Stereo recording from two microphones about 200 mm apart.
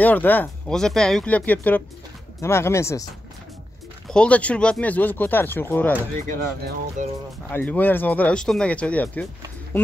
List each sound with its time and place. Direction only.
0.0 s speech: 10° left (ahead or behind)
4.1 s speech: 5° left (ahead or behind)
6.2 s speech: 40° right (ahead or behind)
7.5 s speech: 10° left (ahead or behind)